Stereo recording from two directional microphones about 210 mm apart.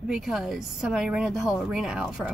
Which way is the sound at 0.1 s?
Centre (ahead or behind).